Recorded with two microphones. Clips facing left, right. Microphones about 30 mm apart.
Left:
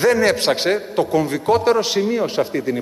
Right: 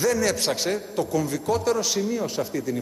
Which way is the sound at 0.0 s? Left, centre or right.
Left.